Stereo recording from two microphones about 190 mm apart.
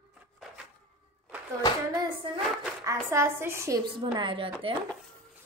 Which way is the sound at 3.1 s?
15° right (ahead or behind).